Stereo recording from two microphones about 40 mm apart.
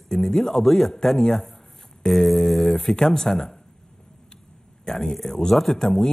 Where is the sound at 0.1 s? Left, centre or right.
Centre.